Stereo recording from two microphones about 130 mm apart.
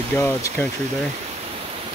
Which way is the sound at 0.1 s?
15° left (ahead or behind).